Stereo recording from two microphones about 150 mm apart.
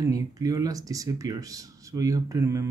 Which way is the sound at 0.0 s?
25° right (ahead or behind).